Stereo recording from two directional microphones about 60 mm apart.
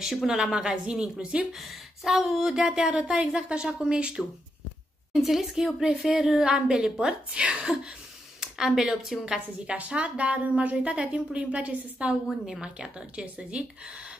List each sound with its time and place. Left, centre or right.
0.0 s speech: centre
1.5 s speech: centre
5.1 s a woman's voice: centre